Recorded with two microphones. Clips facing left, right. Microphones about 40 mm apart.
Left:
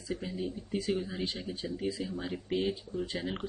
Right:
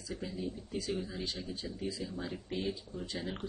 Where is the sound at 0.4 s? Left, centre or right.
Left.